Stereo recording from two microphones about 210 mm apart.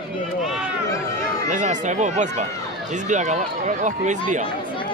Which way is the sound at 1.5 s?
35° right (ahead or behind).